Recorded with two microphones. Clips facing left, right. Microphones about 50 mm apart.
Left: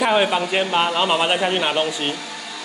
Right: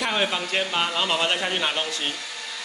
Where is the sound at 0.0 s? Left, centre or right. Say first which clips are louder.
Left 7 dB; centre.